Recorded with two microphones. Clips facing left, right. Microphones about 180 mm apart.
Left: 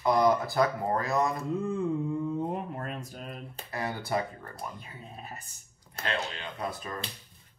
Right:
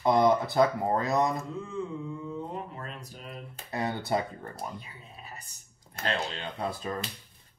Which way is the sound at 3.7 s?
20° right (ahead or behind).